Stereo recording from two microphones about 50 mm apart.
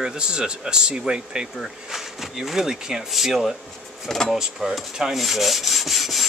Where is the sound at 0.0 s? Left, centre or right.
Centre.